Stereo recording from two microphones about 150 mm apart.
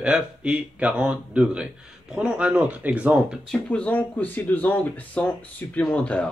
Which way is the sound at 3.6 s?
10° left (ahead or behind).